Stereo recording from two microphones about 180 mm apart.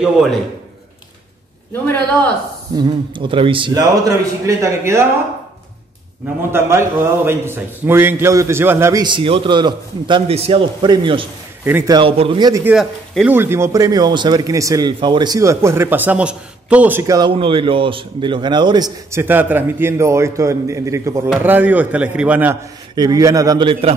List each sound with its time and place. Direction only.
0.0 s a man's voice: centre (ahead or behind)
1.7 s a man's voice: 10° left (ahead or behind)
2.7 s a man's voice: 25° right (ahead or behind)
6.5 s speech: 15° right (ahead or behind)
9.0 s a man's voice: 30° right (ahead or behind)
11.6 s speech: 15° right (ahead or behind)
12.0 s a man's voice: 30° right (ahead or behind)
12.6 s speech: 5° right (ahead or behind)
17.0 s a man's voice: 20° right (ahead or behind)
19.2 s speech: 10° right (ahead or behind)
22.9 s a man's voice: 20° right (ahead or behind)